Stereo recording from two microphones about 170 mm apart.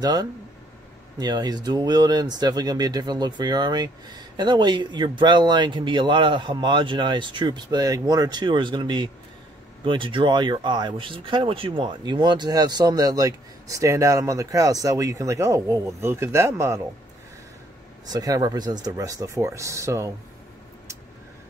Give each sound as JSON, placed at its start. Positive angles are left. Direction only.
{"t": 0.0, "sound": "speech", "side_deg": -25}
{"t": 18.0, "sound": "speech", "side_deg": -20}